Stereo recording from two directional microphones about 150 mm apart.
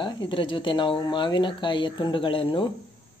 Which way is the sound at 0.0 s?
35° left (ahead or behind).